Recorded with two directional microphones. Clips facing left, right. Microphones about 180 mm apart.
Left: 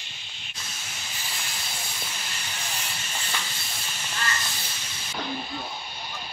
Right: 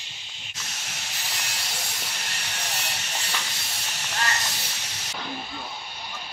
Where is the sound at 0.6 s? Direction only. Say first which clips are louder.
Right 2 dB; 75° right (ahead or behind).